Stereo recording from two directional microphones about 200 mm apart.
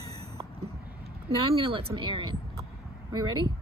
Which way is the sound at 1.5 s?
30° right (ahead or behind).